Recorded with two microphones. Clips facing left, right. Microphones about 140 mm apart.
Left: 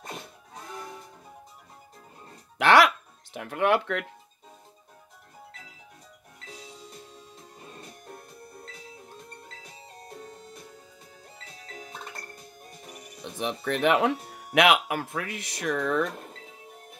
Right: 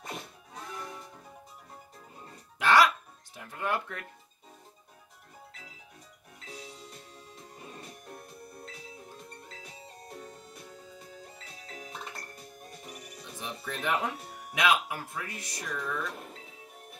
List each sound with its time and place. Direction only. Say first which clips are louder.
2.6 s music: left 4 dB; 70° left (ahead or behind)
3.3 s speech: left 9 dB; 75° left (ahead or behind)
13.2 s speech: left 10 dB; 70° left (ahead or behind)